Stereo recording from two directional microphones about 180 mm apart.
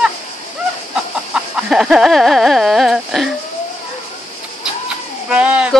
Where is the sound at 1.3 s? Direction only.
5° right (ahead or behind).